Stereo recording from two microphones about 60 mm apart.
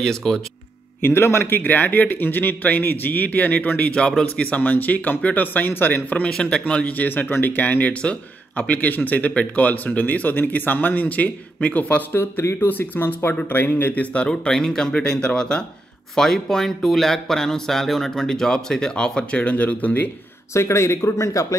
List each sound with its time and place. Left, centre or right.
0.0 s speech: centre
1.0 s a man's voice: left
6.3 s speech: centre
12.1 s a man's voice: left
14.1 s speech: centre
20.5 s speech: left